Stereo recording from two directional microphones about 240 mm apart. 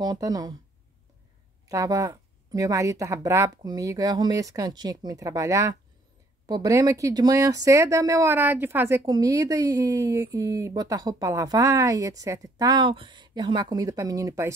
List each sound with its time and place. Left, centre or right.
0.0 s speech: centre
1.7 s speech: centre